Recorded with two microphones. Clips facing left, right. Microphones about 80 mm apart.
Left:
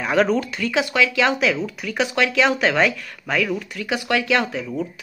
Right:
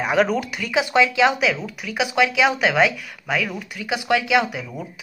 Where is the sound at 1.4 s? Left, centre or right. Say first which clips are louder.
Left 1 dB; centre.